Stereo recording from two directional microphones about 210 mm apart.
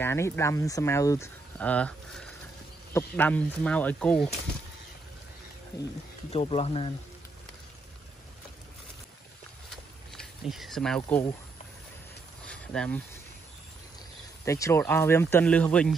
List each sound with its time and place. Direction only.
0.0 s speech: 10° left (ahead or behind)
6.3 s speech: 30° left (ahead or behind)
10.1 s a sound: centre (ahead or behind)
11.0 s speech: 10° left (ahead or behind)
12.4 s a sound: 5° left (ahead or behind)
14.4 s speech: 15° left (ahead or behind)